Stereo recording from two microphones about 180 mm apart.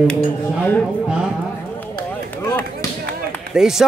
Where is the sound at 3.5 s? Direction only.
5° right (ahead or behind).